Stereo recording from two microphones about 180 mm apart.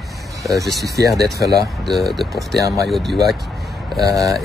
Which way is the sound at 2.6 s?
20° right (ahead or behind).